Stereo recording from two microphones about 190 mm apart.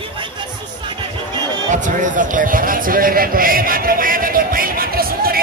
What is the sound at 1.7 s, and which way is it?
A man's voice, 40° right (ahead or behind).